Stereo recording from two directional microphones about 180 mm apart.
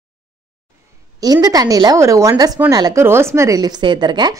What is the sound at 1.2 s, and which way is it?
A woman's voice, 20° right (ahead or behind).